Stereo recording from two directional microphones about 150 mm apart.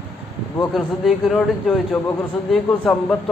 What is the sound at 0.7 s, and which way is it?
A man's voice, centre (ahead or behind).